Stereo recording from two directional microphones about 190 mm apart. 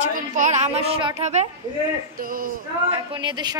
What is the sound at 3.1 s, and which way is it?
Speech, 25° right (ahead or behind).